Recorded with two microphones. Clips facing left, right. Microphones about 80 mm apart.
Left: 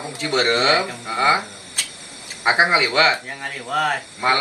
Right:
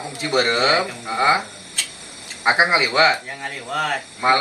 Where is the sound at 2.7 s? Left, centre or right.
Centre.